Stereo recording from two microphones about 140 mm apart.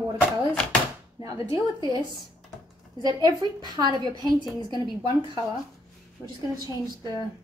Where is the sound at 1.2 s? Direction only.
25° right (ahead or behind).